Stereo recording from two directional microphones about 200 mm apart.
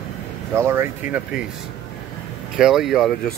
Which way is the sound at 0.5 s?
10° right (ahead or behind).